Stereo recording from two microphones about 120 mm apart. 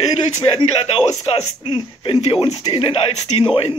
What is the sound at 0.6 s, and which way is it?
Speech, 45° left (ahead or behind).